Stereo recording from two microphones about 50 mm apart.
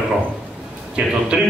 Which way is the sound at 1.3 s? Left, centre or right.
Centre.